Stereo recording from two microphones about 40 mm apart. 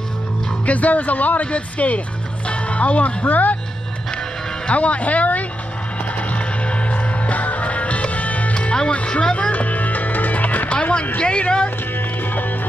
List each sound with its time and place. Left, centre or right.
0.7 s speech: left
4.6 s speech: left
6.1 s music: left
9.0 s music: left
10.8 s a sound: left
11.1 s speech: left
12.2 s music: left